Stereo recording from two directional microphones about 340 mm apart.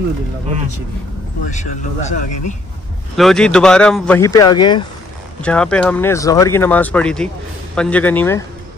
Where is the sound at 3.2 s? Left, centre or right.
Centre.